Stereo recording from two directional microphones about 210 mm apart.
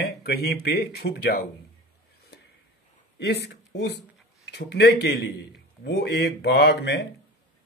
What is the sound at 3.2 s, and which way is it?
Speech, 55° left (ahead or behind).